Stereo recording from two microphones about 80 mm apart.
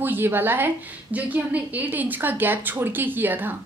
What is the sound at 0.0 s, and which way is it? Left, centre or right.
A woman's voice, right.